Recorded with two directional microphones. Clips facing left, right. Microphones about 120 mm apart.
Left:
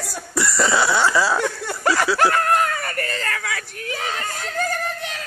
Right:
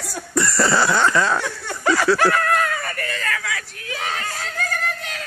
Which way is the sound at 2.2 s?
30° left (ahead or behind).